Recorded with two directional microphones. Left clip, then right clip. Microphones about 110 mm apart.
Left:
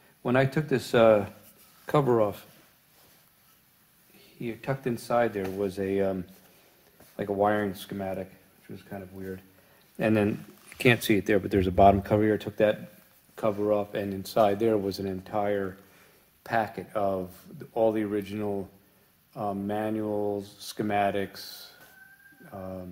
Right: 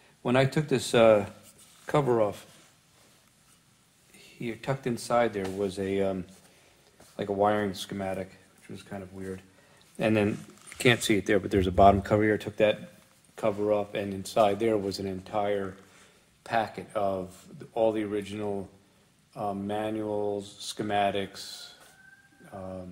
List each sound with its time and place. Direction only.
0.2 s speech: centre (ahead or behind)
1.9 s speech: 40° left (ahead or behind)
4.4 s speech: 15° left (ahead or behind)
9.9 s speech: 20° left (ahead or behind)
13.3 s speech: 30° left (ahead or behind)
16.4 s speech: 55° left (ahead or behind)